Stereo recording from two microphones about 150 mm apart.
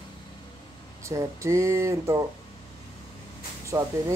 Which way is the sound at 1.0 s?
20° right (ahead or behind).